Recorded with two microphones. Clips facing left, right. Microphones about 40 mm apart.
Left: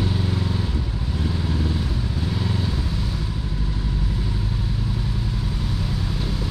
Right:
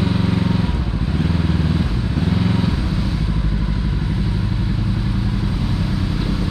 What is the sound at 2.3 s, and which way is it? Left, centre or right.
Vehicle, right.